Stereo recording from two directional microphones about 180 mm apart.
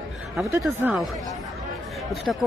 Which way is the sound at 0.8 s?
5° right (ahead or behind).